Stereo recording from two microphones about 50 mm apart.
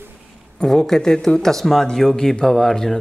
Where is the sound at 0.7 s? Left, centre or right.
Centre.